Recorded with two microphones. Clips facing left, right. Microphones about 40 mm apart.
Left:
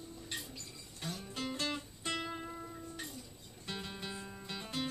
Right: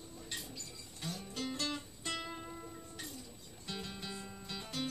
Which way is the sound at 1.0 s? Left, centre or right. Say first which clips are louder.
Left 1 dB; centre.